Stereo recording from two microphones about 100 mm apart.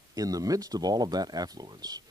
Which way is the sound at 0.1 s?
35° right (ahead or behind).